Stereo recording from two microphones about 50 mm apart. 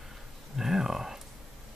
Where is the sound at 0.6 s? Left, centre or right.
Centre.